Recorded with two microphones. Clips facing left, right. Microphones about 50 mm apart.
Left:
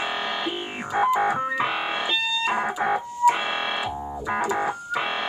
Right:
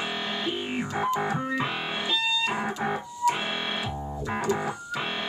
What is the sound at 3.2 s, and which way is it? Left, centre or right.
Synthesizer, left.